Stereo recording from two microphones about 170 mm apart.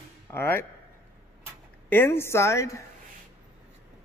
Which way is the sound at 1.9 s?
15° left (ahead or behind).